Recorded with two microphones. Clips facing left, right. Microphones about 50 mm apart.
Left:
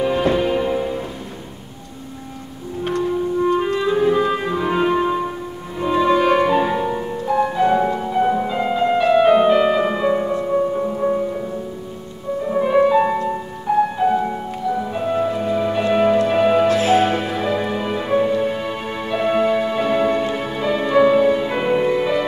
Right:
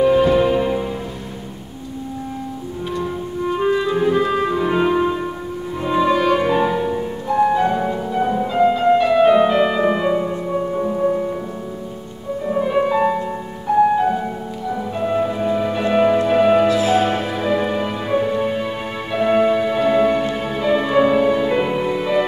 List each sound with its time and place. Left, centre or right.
0.0 s music: centre
3.4 s music: centre
12.4 s music: centre
16.6 s music: left
17.0 s music: centre